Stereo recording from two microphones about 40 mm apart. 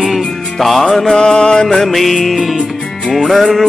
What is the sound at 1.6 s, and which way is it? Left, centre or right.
Music, centre.